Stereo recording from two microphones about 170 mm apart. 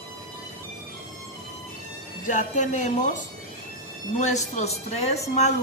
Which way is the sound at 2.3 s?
45° left (ahead or behind).